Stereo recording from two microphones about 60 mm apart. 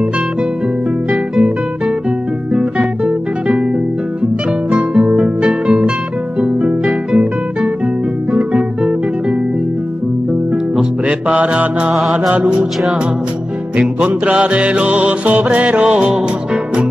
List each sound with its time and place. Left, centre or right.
2.5 s music: centre
4.6 s music: centre
6.4 s harp: centre
8.3 s music: centre
10.5 s music: centre
12.0 s music: centre
12.4 s music: centre
13.7 s music: centre